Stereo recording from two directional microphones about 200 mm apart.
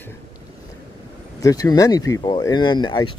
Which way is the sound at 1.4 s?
15° left (ahead or behind).